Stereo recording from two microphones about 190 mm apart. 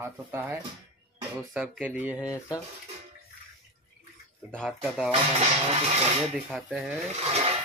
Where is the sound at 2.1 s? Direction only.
15° left (ahead or behind).